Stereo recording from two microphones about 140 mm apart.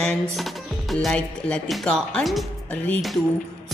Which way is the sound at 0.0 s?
5° left (ahead or behind).